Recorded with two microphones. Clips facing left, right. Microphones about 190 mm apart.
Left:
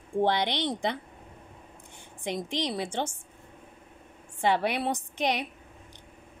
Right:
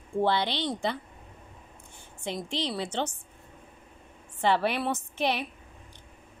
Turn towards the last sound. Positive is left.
turn(degrees=15)  # may be behind; listen again after turning